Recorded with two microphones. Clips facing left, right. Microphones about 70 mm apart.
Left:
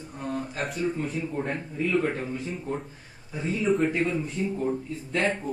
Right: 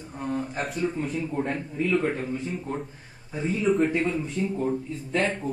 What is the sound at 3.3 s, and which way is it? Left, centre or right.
Speech, centre.